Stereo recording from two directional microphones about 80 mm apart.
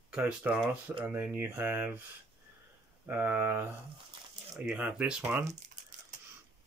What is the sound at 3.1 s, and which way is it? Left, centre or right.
Speech, right.